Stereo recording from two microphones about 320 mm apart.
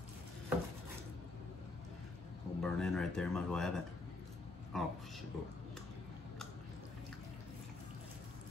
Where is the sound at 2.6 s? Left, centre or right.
Centre.